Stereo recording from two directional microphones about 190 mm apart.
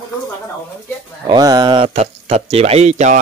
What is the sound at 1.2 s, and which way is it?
Speech, 20° right (ahead or behind).